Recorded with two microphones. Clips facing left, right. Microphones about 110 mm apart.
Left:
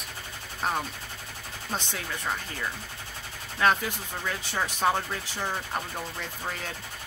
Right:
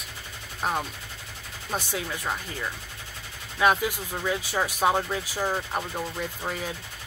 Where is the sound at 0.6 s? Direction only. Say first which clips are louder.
Right 1 dB; 5° right (ahead or behind).